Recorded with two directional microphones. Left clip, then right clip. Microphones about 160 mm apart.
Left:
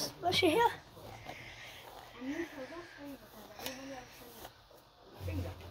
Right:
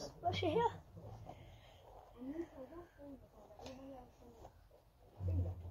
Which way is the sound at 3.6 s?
10° left (ahead or behind).